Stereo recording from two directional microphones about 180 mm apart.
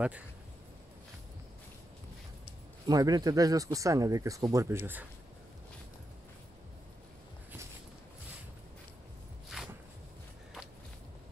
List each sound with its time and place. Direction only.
2.9 s speech: 20° right (ahead or behind)
9.5 s walk: centre (ahead or behind)